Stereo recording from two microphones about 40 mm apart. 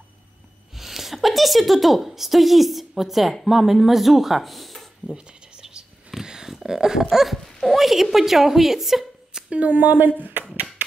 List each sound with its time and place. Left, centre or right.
0.7 s a woman's voice: centre
5.1 s whispering: centre
6.2 s a sound: centre
6.5 s a woman's voice: centre
9.5 s speech: right